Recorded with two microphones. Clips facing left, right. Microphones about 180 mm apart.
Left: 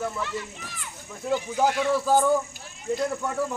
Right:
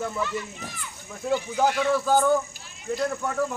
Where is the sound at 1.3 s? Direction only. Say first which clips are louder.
Even; 5° left (ahead or behind).